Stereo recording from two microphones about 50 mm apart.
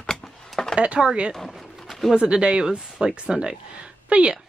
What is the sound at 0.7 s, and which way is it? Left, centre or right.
Speech, right.